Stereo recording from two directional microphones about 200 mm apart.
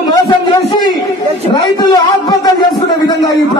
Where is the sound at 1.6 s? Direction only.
20° left (ahead or behind).